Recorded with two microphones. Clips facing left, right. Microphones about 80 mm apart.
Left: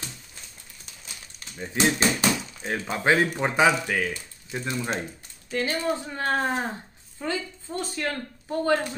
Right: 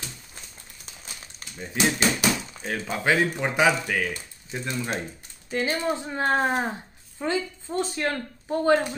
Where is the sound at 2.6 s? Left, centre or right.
Centre.